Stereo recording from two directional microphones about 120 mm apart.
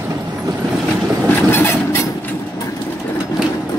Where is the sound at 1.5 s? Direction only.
20° left (ahead or behind).